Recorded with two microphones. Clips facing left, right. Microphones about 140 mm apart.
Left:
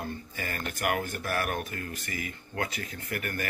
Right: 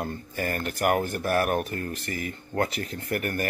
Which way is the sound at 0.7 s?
40° right (ahead or behind).